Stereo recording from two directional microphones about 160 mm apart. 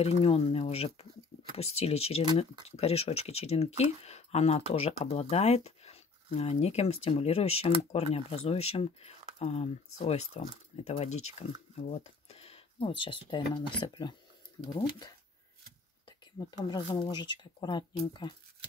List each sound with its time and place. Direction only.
0.0 s speech: 40° left (ahead or behind)
16.1 s speech: 25° left (ahead or behind)